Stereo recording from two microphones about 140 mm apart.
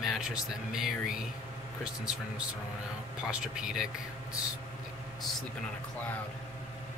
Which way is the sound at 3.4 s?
5° right (ahead or behind).